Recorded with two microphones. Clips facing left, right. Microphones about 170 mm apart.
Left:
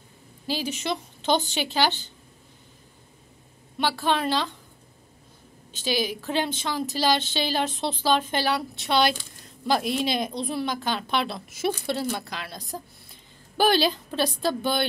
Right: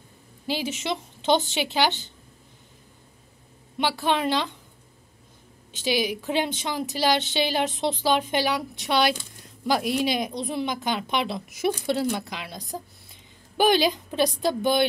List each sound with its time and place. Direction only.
0.5 s a woman's voice: 20° right (ahead or behind)
3.7 s a woman's voice: 20° right (ahead or behind)
5.7 s a woman's voice: 20° right (ahead or behind)